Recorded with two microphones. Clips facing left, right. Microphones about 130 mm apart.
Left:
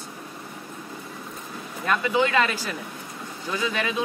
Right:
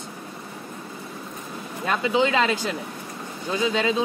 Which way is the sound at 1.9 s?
20° right (ahead or behind).